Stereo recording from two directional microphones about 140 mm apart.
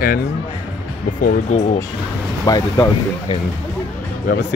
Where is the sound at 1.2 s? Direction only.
60° left (ahead or behind).